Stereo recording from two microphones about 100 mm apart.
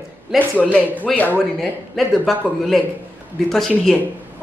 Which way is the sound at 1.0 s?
15° left (ahead or behind).